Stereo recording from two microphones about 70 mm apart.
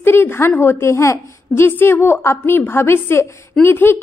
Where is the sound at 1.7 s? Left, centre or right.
Left.